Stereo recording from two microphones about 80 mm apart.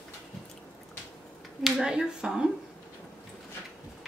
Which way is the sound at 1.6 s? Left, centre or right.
Centre.